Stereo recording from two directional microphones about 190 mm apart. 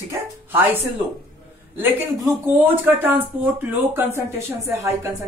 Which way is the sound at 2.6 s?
10° right (ahead or behind).